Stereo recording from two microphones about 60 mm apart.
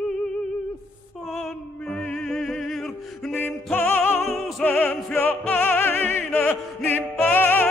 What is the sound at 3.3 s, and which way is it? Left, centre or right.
Music, left.